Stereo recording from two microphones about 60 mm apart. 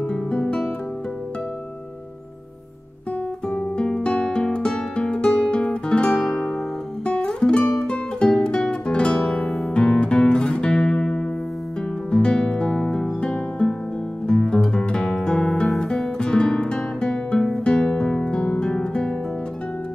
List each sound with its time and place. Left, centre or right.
0.0 s guitar: centre
3.4 s music: centre
9.7 s music: centre
15.8 s guitar: centre